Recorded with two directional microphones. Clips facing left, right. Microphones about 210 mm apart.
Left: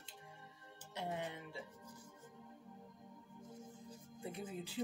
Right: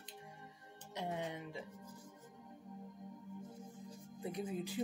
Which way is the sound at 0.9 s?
20° right (ahead or behind).